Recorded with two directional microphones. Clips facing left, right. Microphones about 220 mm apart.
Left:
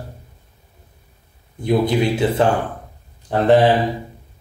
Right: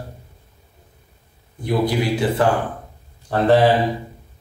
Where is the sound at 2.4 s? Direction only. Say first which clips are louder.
Left 1 dB; 25° left (ahead or behind).